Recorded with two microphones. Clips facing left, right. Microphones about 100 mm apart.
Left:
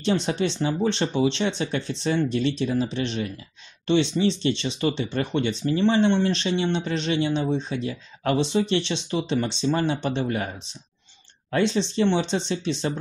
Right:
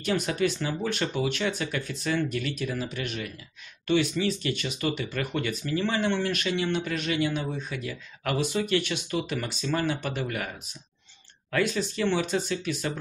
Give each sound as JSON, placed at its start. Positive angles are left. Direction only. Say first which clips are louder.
{"t": 0.0, "sound": "speech", "louder": "left 3 dB", "side_deg": 25}